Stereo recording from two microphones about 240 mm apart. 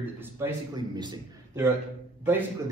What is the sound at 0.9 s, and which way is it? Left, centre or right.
Speech, centre.